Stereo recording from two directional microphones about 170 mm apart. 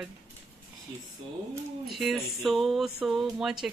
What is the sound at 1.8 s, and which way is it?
A woman's voice, centre (ahead or behind).